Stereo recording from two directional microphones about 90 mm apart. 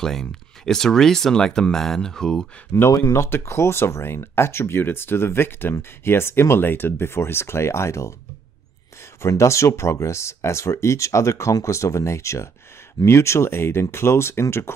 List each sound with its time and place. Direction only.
0.0 s speech: 5° left (ahead or behind)
2.7 s speech: 30° left (ahead or behind)
9.2 s speech: 35° left (ahead or behind)